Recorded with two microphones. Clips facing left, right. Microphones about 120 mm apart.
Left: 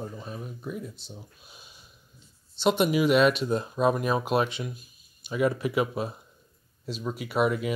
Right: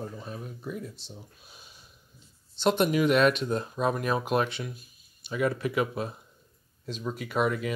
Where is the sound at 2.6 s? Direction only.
10° left (ahead or behind).